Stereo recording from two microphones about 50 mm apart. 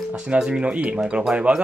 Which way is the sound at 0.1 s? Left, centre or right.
Centre.